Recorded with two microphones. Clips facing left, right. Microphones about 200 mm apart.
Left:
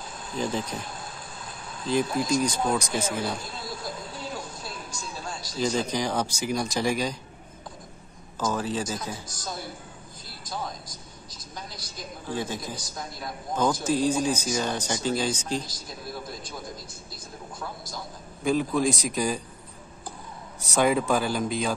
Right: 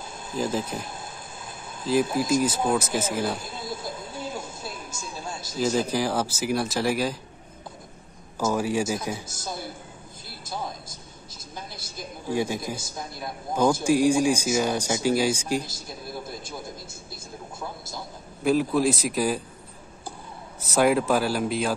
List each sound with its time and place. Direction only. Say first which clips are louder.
0.4 s speech: right 2 dB; 5° right (ahead or behind)
0.8 s a sound: right 1 dB; 25° right (ahead or behind)
1.8 s speech: right 2 dB; 5° right (ahead or behind)
3.4 s a sound: right 2 dB; 20° right (ahead or behind)
5.6 s speech: right 2 dB; 5° right (ahead or behind)
8.4 s speech: right 4 dB; 10° right (ahead or behind)
10.4 s a sound: right 1 dB; 25° right (ahead or behind)
12.3 s speech: right 5 dB; 10° right (ahead or behind)
12.7 s a man's voice: right 2 dB; 25° right (ahead or behind)
13.5 s speech: right 4 dB; 10° right (ahead or behind)
17.6 s a sound: right 1 dB; 25° right (ahead or behind)
18.4 s speech: right 2 dB; 5° right (ahead or behind)
20.6 s speech: right 2 dB; centre (ahead or behind)